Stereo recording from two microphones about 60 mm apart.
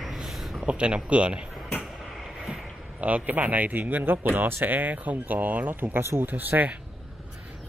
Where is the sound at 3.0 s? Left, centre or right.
Right.